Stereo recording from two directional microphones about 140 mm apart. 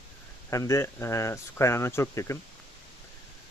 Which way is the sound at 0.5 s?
20° left (ahead or behind).